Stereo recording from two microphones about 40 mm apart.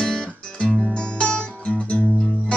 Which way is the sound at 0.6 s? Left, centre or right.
Centre.